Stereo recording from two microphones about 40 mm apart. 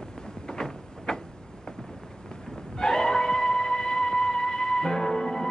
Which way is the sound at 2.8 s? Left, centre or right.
Centre.